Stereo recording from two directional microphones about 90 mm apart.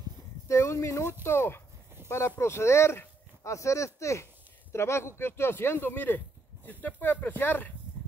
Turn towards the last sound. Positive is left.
turn(degrees=20)  # may be behind; listen again after turning